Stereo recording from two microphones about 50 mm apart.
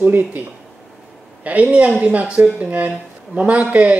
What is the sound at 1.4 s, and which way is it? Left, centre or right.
Speech, right.